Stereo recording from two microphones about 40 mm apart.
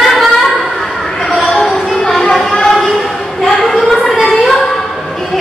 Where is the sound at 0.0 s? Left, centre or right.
Centre.